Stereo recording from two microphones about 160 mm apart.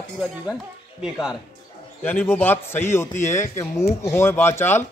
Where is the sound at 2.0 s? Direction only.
15° left (ahead or behind).